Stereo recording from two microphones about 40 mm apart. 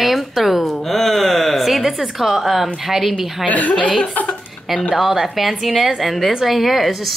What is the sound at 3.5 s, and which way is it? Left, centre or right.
Speech, left.